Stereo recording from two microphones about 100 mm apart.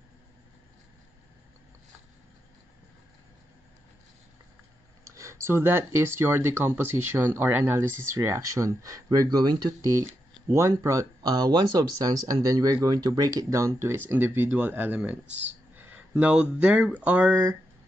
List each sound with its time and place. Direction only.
5.0 s speech: 30° right (ahead or behind)